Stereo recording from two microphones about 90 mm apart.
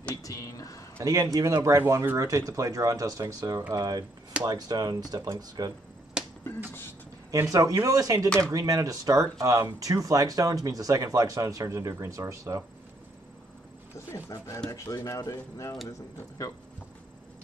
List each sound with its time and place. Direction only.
0.1 s a sound: 40° left (ahead or behind)
1.0 s speech: 40° right (ahead or behind)
7.2 s speech: 35° right (ahead or behind)
14.9 s speech: 40° left (ahead or behind)